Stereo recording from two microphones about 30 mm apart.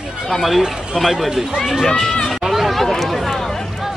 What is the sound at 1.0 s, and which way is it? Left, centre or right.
Speech, centre.